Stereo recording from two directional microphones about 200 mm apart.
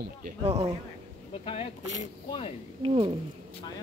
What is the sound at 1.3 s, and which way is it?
Speech, 30° left (ahead or behind).